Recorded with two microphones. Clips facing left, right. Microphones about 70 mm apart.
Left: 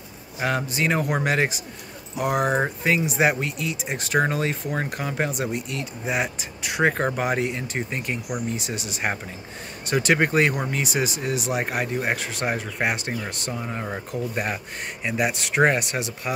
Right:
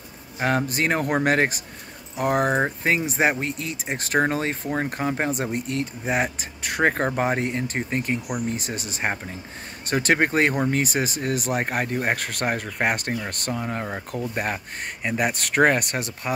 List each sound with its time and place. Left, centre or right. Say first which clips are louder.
0.4 s speech: right 2 dB; right